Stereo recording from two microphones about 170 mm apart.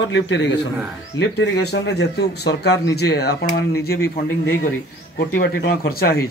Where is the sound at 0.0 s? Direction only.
90° left; by 4.0 s 65° left (ahead or behind).